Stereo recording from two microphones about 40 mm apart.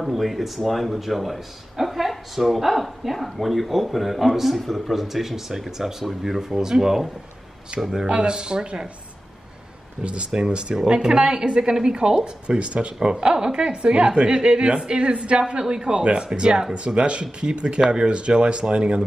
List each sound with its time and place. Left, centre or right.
0.0 s speech: centre
8.1 s speech: right
10.3 s speech: centre